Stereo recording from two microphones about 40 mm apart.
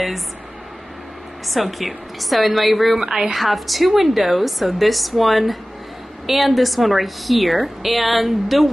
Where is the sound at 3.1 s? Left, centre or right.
Centre.